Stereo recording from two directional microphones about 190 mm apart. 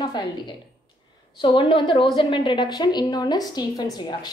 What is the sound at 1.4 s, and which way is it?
A woman's voice, 25° left (ahead or behind).